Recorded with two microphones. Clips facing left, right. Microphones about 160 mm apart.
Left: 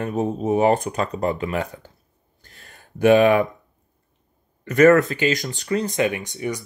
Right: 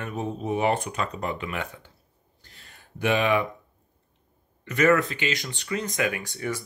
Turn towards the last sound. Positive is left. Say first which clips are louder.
# left 4 dB
turn(degrees=20)  # may be behind; listen again after turning